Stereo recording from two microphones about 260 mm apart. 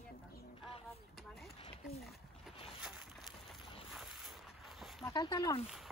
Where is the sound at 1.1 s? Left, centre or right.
Centre.